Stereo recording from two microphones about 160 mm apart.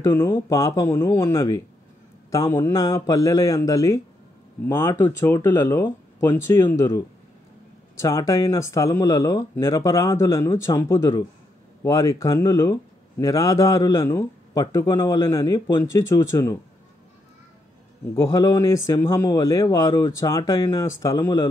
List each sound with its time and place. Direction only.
0.0 s speech: 15° left (ahead or behind)
8.0 s speech: 20° left (ahead or behind)
18.1 s speech: 20° left (ahead or behind)